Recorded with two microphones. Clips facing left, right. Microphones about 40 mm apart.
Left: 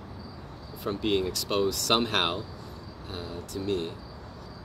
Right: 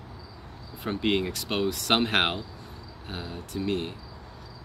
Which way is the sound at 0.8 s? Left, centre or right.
Right.